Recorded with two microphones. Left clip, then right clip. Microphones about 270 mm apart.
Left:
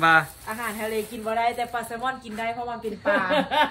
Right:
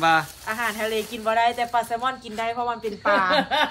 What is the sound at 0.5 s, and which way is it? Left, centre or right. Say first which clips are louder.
Speech: right 4 dB; right.